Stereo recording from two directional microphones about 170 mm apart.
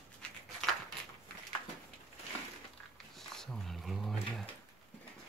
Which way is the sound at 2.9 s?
Centre (ahead or behind).